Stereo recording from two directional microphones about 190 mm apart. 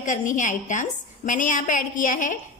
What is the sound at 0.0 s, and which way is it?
A woman's voice, 40° left (ahead or behind).